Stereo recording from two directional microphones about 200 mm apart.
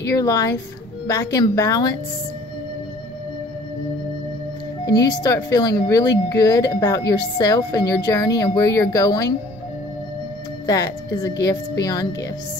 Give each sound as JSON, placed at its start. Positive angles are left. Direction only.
{"t": 0.0, "sound": "speech", "side_deg": 15}
{"t": 4.8, "sound": "speech", "side_deg": 20}
{"t": 10.7, "sound": "speech", "side_deg": 15}